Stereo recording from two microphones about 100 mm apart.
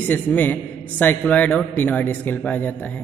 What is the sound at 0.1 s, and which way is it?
A man's voice, 15° left (ahead or behind).